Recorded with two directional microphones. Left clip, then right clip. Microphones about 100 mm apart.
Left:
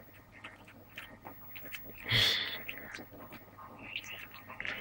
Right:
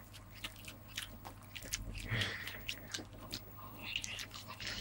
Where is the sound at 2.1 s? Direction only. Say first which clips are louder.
Left 11 dB; 35° left (ahead or behind).